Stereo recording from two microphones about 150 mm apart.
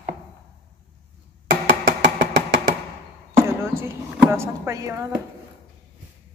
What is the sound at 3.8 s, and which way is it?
Speech, 20° right (ahead or behind).